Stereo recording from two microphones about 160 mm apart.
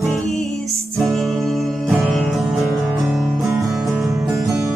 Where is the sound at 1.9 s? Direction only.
Centre (ahead or behind).